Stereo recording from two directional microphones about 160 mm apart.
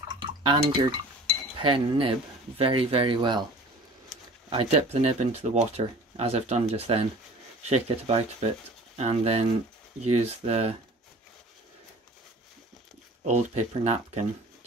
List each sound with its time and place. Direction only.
0.1 s drip: 30° right (ahead or behind)
1.6 s speech: 30° right (ahead or behind)
4.5 s speech: 35° right (ahead or behind)
13.2 s speech: 45° right (ahead or behind)